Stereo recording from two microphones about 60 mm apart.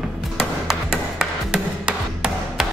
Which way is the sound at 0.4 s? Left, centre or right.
Centre.